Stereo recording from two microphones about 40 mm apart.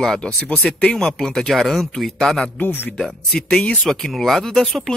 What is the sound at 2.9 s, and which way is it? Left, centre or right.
Speech, centre.